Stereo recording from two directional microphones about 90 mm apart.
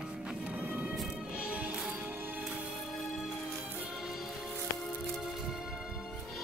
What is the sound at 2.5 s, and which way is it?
Music, centre (ahead or behind).